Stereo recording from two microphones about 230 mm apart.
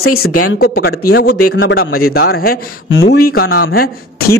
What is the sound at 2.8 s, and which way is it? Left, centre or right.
Speech, left.